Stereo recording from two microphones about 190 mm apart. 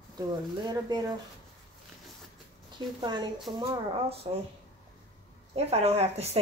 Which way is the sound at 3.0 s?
25° right (ahead or behind).